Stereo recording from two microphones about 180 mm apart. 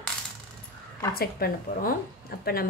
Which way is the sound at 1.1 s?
60° left (ahead or behind).